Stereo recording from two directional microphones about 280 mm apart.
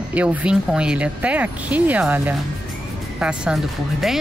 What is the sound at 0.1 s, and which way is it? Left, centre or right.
Speech, centre.